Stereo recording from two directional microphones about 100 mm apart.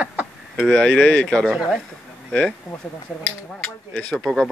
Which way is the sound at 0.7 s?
10° left (ahead or behind).